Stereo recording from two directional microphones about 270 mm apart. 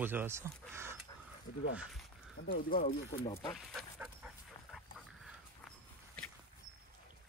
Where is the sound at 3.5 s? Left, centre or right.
Centre.